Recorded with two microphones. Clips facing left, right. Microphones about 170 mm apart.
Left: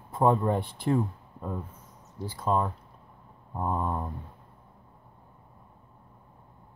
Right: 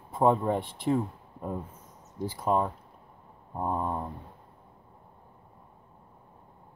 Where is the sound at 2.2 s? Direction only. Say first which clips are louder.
Right 1 dB; 15° right (ahead or behind).